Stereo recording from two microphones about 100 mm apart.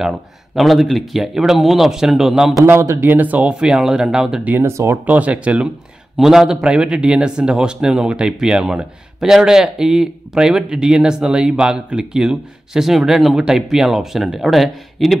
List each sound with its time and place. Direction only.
0.6 s speech: centre (ahead or behind)
2.6 s a man's voice: 25° right (ahead or behind); by 4.6 s 5° right (ahead or behind)
4.6 s speech: 25° right (ahead or behind)
5.0 s a man's voice: 15° right (ahead or behind)